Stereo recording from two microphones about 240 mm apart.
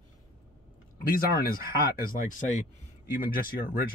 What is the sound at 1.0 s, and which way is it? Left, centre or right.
Speech, left.